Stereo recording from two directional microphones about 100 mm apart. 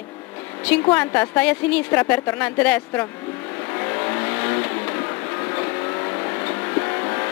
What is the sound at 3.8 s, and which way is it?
Vehicle, 25° left (ahead or behind).